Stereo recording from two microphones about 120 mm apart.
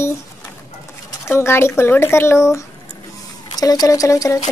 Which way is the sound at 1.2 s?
20° left (ahead or behind).